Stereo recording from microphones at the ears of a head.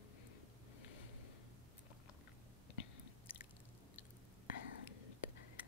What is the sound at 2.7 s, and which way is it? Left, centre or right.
Chewing, left.